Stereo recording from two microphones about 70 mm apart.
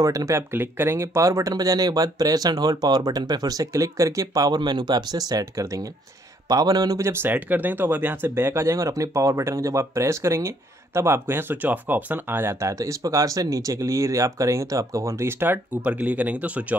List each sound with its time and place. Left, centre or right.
0.0 s speech: right
1.5 s speech: right
7.0 s speech: right
7.2 s speech: right
15.4 s speech: right